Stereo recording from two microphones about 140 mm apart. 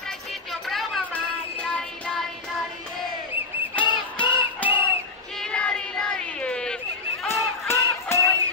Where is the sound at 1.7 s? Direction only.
5° left (ahead or behind).